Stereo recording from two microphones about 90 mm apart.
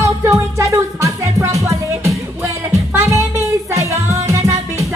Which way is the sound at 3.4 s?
35° right (ahead or behind).